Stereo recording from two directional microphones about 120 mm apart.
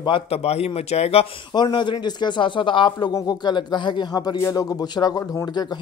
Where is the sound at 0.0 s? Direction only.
50° left (ahead or behind).